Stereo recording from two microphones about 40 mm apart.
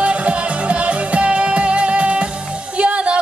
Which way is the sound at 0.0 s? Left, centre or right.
Right.